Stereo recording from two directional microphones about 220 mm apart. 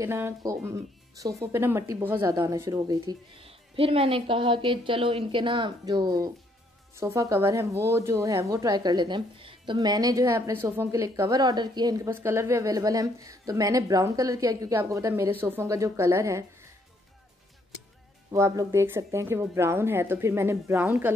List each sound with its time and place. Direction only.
0.0 s a woman's voice: 10° right (ahead or behind)
18.3 s speech: 15° right (ahead or behind)